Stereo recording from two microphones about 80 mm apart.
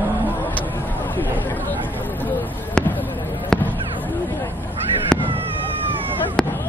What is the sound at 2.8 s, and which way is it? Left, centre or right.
Basketball bounce, centre.